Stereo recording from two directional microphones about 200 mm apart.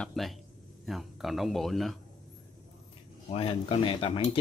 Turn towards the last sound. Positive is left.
turn(degrees=25)  # may be behind; listen again after turning